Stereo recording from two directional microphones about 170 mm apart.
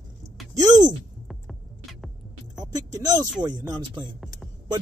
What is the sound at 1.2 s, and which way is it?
Music, centre (ahead or behind).